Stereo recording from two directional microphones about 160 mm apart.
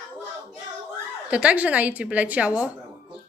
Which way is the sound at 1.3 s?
10° right (ahead or behind).